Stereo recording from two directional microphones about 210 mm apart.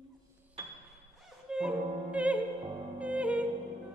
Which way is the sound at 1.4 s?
5° right (ahead or behind).